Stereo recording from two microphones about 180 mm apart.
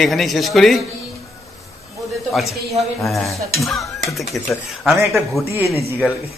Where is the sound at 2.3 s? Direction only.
Centre (ahead or behind).